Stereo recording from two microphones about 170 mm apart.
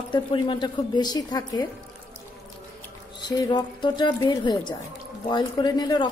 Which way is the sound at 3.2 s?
25° left (ahead or behind).